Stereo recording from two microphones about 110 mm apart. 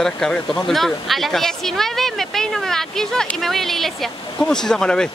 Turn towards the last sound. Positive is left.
turn(degrees=5)  # may be behind; listen again after turning